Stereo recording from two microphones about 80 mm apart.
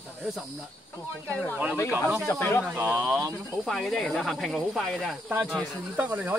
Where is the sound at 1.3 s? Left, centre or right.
Centre.